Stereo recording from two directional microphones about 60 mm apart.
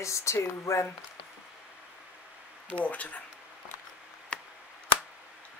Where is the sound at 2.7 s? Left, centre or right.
Left.